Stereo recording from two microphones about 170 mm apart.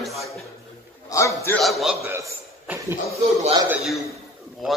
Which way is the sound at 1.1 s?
15° left (ahead or behind).